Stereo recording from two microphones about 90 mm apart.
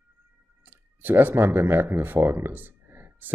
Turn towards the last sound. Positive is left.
turn(degrees=-25)  # may be behind; listen again after turning